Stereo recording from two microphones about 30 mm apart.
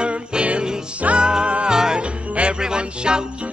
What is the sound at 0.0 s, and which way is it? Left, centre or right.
Music, right.